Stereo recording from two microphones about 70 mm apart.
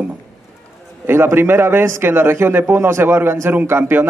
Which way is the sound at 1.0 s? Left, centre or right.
Right.